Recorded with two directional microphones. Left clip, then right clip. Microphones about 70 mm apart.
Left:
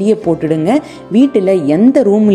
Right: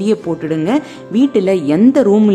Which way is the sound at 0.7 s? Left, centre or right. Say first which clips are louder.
Left 3 dB; left.